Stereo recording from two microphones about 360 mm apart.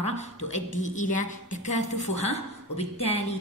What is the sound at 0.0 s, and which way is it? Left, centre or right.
A woman's voice, centre.